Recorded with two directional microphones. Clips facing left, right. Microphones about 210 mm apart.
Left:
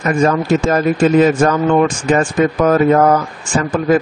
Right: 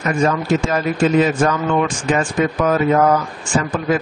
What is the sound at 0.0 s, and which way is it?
Speech, 45° left (ahead or behind).